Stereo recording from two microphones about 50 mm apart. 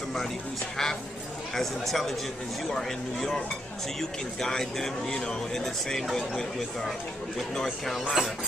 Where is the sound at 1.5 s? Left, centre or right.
Centre.